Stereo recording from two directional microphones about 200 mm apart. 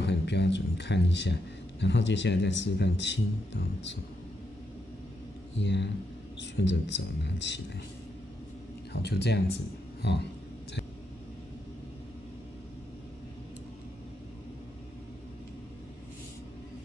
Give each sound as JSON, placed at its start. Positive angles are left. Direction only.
{"t": 0.0, "sound": "speech", "side_deg": 60}
{"t": 5.6, "sound": "speech", "side_deg": 60}
{"t": 9.0, "sound": "speech", "side_deg": 55}